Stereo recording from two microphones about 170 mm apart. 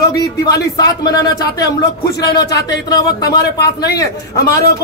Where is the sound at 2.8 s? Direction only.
20° left (ahead or behind).